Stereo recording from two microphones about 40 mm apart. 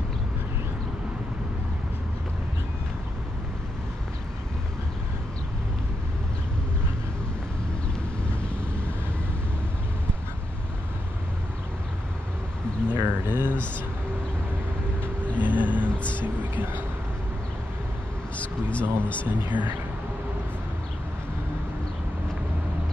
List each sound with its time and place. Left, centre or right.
12.9 s bird: right
15.3 s music: right
18.4 s a sound: left
19.2 s speech: right